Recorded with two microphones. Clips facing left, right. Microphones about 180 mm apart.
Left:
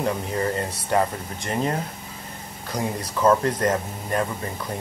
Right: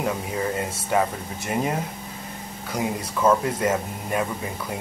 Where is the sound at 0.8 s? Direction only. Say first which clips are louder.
Left 1 dB; 5° right (ahead or behind).